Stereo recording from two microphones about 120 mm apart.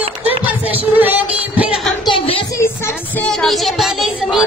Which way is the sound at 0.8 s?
15° right (ahead or behind).